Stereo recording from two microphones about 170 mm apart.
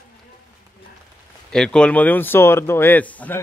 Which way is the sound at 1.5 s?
5° left (ahead or behind).